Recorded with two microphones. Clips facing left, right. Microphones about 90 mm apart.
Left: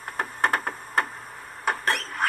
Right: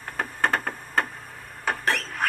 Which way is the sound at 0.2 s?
15° left (ahead or behind).